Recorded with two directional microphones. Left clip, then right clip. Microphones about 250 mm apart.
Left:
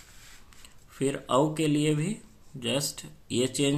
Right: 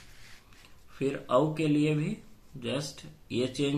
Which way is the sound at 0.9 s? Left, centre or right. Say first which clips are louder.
Left 1 dB; left.